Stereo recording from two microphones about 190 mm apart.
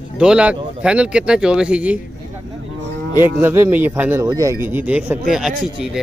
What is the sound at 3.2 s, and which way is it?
Speech, 15° right (ahead or behind).